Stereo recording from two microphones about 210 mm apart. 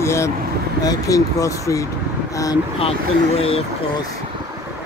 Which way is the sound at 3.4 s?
30° left (ahead or behind).